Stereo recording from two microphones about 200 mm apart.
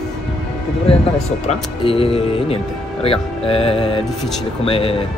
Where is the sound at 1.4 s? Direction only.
25° left (ahead or behind).